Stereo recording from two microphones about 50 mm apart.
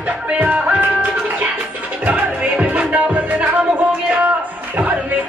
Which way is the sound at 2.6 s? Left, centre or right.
Right.